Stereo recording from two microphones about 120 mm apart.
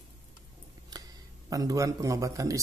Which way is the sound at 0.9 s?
30° right (ahead or behind).